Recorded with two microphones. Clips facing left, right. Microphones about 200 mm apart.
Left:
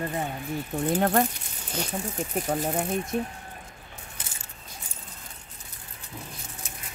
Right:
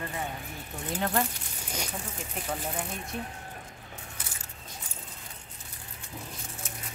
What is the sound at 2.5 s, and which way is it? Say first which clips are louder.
Speech: left 6 dB; 45° left (ahead or behind).